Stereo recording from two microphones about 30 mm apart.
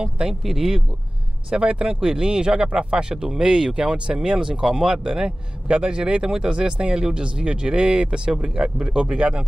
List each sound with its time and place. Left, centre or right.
0.3 s speech: centre
1.5 s speech: right
6.8 s speech: right